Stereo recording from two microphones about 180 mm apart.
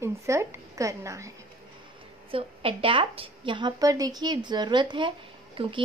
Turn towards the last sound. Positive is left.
turn(degrees=-30)  # may be behind; listen again after turning